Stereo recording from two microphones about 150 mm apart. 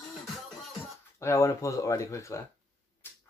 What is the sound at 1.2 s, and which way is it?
Speech, 20° left (ahead or behind).